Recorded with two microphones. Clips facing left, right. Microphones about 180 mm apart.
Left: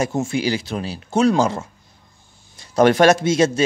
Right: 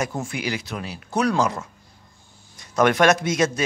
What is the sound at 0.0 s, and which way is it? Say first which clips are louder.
Speech: left 6 dB; 25° left (ahead or behind).